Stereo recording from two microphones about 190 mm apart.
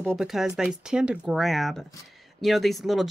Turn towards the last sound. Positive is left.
turn(degrees=0)  # may be behind; listen again after turning